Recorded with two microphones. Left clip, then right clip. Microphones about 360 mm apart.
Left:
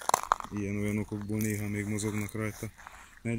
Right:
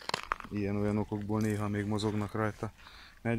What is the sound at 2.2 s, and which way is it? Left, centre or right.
Speech, centre.